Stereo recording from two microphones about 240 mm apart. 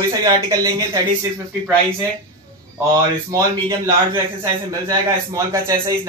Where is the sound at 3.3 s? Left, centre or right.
Centre.